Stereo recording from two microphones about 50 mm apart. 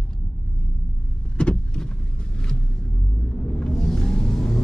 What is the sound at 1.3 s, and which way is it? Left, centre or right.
Vehicle, centre.